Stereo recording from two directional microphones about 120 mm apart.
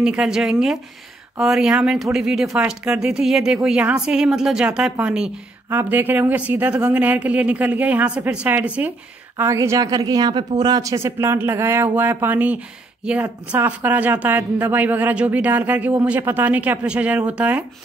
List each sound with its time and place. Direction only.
0.0 s a woman's voice: 5° right (ahead or behind)
9.4 s a woman's voice: 25° right (ahead or behind)